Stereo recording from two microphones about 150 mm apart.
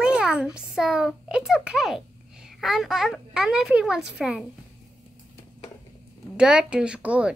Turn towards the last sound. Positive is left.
turn(degrees=-5)  # may be behind; listen again after turning